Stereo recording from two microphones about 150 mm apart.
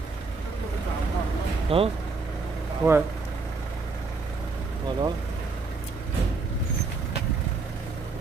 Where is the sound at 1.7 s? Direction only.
40° right (ahead or behind).